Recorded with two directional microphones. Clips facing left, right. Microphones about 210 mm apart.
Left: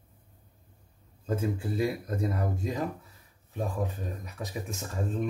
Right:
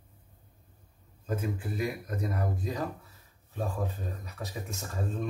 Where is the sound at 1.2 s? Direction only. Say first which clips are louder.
Left 3 dB; 30° left (ahead or behind).